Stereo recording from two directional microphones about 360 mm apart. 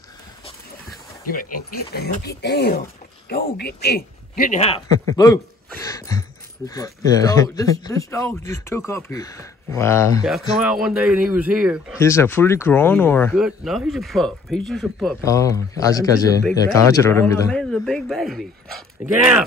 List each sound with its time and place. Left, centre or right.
1.8 s a man's voice: left; by 12.0 s centre
12.0 s speech: centre